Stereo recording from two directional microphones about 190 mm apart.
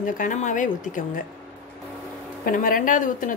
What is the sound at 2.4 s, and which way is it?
Speech, 45° left (ahead or behind).